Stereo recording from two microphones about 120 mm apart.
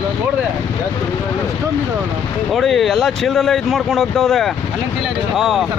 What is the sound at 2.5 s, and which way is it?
Speech, centre (ahead or behind).